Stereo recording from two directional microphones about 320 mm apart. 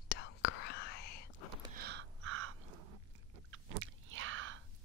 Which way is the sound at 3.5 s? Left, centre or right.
Right.